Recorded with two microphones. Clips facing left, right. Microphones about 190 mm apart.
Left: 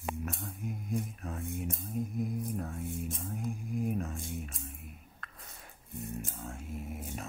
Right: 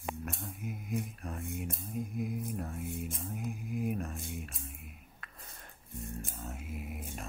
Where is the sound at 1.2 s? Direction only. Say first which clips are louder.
Left 2 dB; centre (ahead or behind).